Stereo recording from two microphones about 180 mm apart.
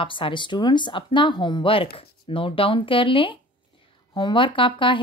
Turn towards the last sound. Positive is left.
turn(degrees=30)  # may be behind; listen again after turning